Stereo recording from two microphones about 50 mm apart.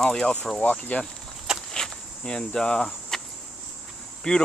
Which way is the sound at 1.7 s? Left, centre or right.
Centre.